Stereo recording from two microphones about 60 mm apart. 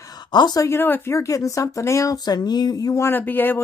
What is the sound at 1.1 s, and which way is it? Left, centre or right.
Speech, left.